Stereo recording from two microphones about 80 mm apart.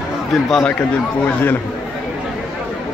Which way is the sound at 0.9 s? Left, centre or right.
Left.